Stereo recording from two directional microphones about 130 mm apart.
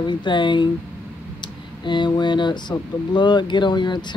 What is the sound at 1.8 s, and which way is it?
Speech, 35° left (ahead or behind).